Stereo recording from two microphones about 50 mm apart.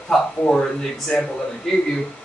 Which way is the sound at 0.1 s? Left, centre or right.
Centre.